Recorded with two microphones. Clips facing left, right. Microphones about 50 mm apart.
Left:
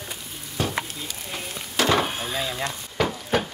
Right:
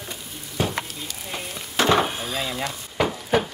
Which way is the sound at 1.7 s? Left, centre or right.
Right.